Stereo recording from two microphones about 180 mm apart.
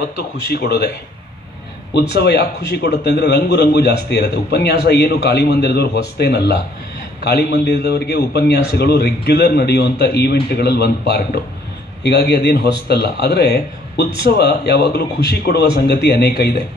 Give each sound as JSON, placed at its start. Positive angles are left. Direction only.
{"t": 0.5, "sound": "a man's voice", "side_deg": 60}
{"t": 2.1, "sound": "a man's voice", "side_deg": 65}